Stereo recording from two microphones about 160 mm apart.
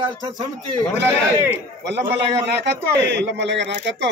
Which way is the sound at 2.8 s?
90° right.